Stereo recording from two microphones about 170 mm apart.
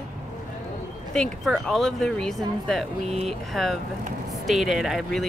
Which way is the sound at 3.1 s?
40° right (ahead or behind).